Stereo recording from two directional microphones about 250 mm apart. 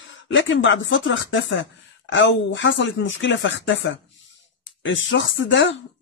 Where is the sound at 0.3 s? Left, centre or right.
Left.